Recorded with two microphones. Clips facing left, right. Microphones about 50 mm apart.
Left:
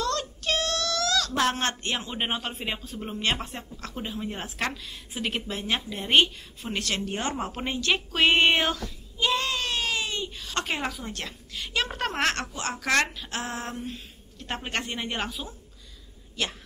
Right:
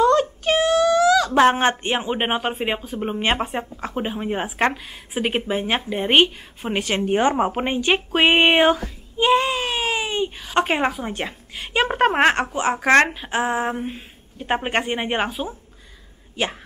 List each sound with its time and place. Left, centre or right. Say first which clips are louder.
0.4 s a sound: right 10 dB; right
1.3 s speech: right 10 dB; right
10.2 s a woman's voice: right 10 dB; right
13.3 s a woman's voice: right 11 dB; centre